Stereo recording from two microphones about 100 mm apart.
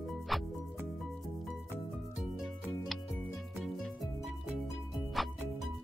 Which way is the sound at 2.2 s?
Centre (ahead or behind).